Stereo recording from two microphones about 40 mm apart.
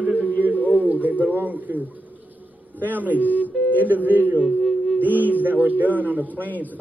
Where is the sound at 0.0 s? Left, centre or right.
Right.